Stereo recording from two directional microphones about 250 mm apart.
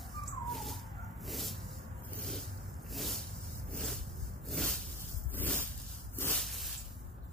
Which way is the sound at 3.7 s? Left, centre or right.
Centre.